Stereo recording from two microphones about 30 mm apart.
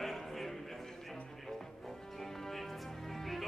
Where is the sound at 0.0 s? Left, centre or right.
Centre.